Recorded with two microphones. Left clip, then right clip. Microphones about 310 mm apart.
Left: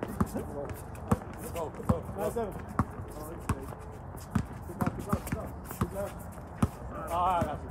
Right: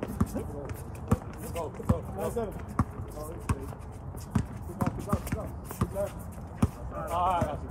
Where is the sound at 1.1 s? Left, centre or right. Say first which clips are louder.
Even; centre.